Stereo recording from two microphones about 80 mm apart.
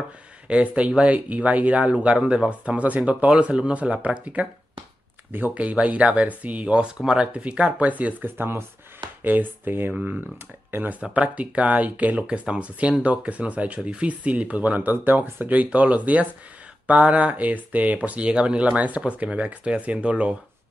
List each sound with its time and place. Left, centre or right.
0.5 s speech: centre